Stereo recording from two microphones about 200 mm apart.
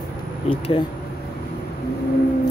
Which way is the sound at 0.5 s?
25° left (ahead or behind).